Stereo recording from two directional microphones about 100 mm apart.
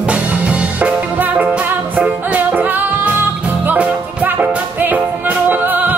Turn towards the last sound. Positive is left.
turn(degrees=-20)  # may be behind; listen again after turning